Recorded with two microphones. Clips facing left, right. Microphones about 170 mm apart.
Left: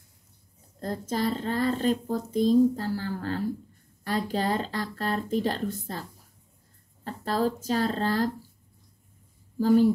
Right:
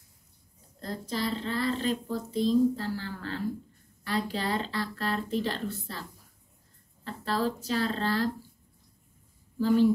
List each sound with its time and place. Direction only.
0.7 s speech: 45° left (ahead or behind)
7.1 s speech: 45° left (ahead or behind)
9.6 s a woman's voice: 45° left (ahead or behind)